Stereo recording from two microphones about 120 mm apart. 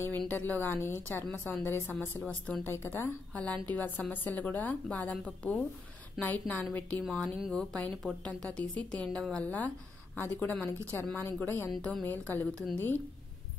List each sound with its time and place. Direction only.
0.3 s a woman's voice: 15° left (ahead or behind)
3.3 s a woman's voice: 10° left (ahead or behind)
7.1 s a woman's voice: 5° left (ahead or behind)
11.7 s a woman's voice: 5° left (ahead or behind)